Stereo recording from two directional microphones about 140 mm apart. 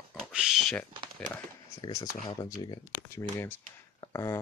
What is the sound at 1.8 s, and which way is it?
Speech, 25° left (ahead or behind).